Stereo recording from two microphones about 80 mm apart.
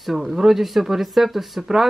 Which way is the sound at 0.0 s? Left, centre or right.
Centre.